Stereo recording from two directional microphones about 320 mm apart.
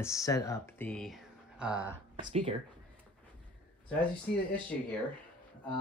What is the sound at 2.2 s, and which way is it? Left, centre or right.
Speech, right.